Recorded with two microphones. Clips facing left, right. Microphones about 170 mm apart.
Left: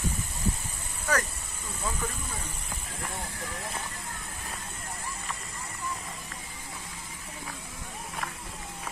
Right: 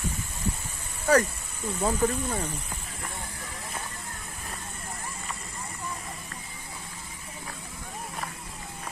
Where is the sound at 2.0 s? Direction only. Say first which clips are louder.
Right 14 dB; 40° right (ahead or behind).